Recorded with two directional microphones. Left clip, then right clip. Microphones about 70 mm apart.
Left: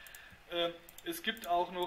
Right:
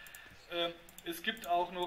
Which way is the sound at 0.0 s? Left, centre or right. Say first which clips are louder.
Right 1 dB; left.